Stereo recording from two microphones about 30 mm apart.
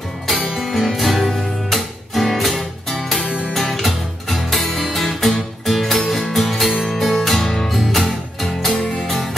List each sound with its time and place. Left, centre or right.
0.6 s music: centre
7.3 s music: centre
7.7 s music: centre
8.7 s music: centre